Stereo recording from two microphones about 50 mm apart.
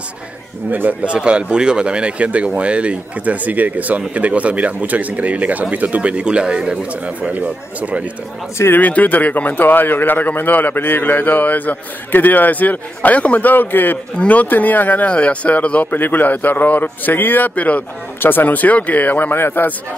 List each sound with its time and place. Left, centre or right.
0.7 s speech: right
1.0 s speech: right
8.7 s speech: left
14.1 s speech: left
15.9 s speech: left
18.2 s a man's voice: left